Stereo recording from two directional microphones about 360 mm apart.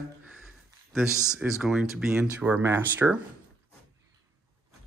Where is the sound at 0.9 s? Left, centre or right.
Centre.